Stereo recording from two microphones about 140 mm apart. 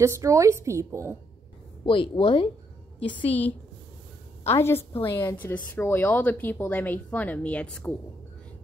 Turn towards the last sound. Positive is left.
turn(degrees=10)  # may be behind; listen again after turning